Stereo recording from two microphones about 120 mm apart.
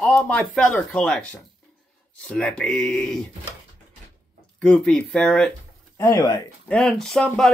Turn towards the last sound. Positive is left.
turn(degrees=5)  # may be behind; listen again after turning